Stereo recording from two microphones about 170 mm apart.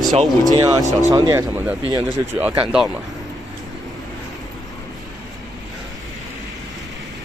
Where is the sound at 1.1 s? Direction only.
20° right (ahead or behind); by 2.8 s 5° right (ahead or behind).